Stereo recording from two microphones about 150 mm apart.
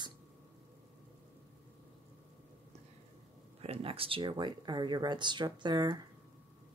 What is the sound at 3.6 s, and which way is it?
Speech, 40° right (ahead or behind).